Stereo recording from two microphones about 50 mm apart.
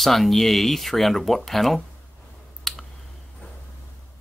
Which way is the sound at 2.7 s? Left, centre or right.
Centre.